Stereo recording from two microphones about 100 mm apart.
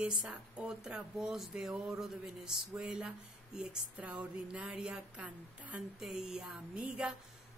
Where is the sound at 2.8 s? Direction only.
10° right (ahead or behind).